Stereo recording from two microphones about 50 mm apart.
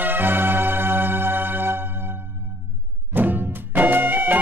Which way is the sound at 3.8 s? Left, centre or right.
Right.